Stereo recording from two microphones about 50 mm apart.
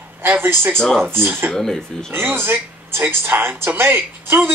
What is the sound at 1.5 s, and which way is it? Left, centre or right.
Speech, centre.